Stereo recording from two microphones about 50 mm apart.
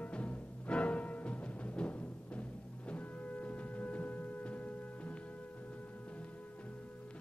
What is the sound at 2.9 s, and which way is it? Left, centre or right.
Music, left.